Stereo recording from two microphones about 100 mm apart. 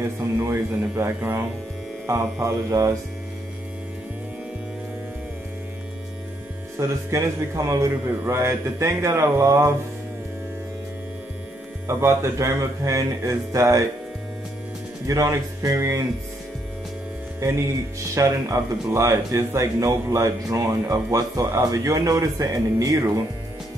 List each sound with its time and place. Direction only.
0.0 s a man's voice: 25° right (ahead or behind)
6.8 s speech: 30° right (ahead or behind)
11.9 s speech: 25° right (ahead or behind)
15.0 s a man's voice: 35° right (ahead or behind)
17.4 s a man's voice: 30° right (ahead or behind)